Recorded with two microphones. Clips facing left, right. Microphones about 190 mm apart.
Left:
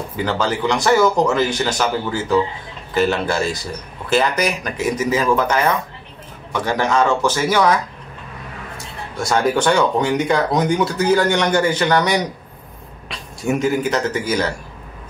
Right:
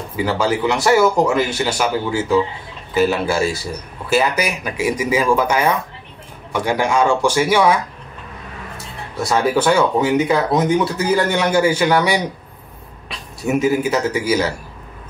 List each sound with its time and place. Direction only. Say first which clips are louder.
0.1 s speech: right 3 dB; 5° right (ahead or behind)
9.1 s speech: right 1 dB; 5° right (ahead or behind)